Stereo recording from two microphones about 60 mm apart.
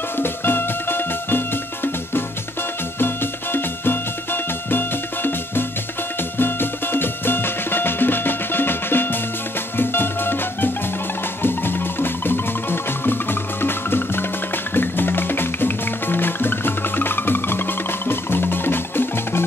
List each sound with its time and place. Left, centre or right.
0.2 s music: left
3.0 s music: left